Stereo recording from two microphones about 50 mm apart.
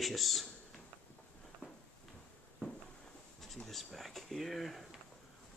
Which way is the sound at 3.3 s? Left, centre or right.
Centre.